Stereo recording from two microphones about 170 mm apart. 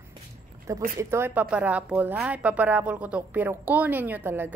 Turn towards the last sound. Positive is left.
turn(degrees=-10)  # may be behind; listen again after turning